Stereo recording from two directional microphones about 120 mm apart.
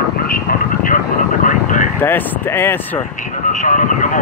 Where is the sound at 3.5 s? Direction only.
90° left.